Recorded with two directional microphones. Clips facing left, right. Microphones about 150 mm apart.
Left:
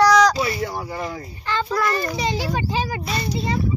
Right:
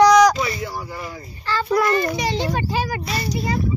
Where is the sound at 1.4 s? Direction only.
20° left (ahead or behind).